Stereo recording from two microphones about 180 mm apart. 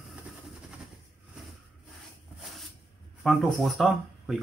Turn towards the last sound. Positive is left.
turn(degrees=0)  # may be behind; listen again after turning